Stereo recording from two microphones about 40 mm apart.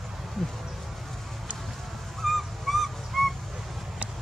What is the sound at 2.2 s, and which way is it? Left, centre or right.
Owl, centre.